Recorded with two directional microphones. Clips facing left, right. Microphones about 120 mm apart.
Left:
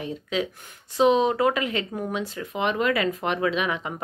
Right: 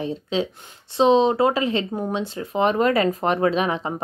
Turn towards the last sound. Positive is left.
turn(degrees=-35)  # may be behind; listen again after turning